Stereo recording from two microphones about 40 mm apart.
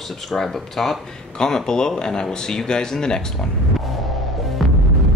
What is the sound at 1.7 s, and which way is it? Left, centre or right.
Speech, centre.